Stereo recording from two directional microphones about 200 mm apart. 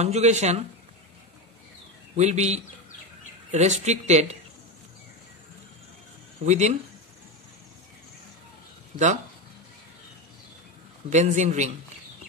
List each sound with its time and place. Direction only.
0.0 s a woman's voice: 35° right (ahead or behind)
2.1 s a woman's voice: 35° right (ahead or behind)
6.4 s a woman's voice: 35° right (ahead or behind)
8.9 s speech: 35° right (ahead or behind)
11.1 s a woman's voice: 35° right (ahead or behind)